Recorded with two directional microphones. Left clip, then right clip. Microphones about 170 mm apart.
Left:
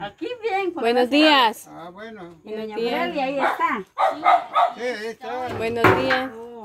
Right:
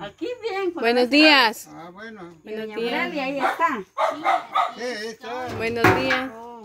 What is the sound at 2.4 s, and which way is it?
Speech, centre (ahead or behind).